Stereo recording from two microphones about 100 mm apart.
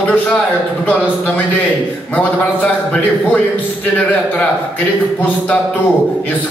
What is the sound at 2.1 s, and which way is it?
A man's voice, 15° left (ahead or behind).